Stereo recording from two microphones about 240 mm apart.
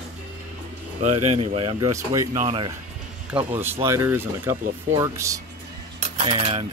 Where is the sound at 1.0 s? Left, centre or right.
Right.